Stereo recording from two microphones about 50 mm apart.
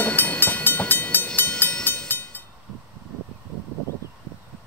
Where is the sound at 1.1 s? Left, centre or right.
Left.